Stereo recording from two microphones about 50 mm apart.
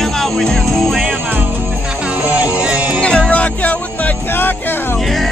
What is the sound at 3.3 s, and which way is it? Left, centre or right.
Music, left.